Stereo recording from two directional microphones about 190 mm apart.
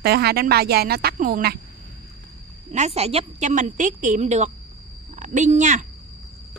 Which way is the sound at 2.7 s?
35° right (ahead or behind).